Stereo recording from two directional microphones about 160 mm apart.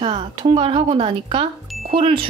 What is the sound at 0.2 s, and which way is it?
Speech, 30° right (ahead or behind).